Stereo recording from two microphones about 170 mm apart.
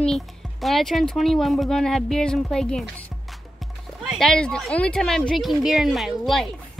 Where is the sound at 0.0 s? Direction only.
Centre (ahead or behind).